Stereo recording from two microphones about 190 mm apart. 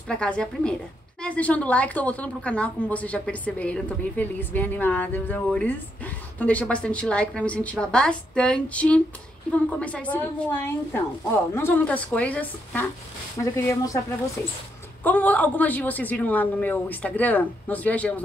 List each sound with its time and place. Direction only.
0.1 s a woman's voice: 5° left (ahead or behind)
15.0 s a woman's voice: 10° left (ahead or behind)